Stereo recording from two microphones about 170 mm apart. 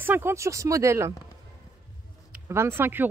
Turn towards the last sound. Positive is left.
turn(degrees=-10)  # may be behind; listen again after turning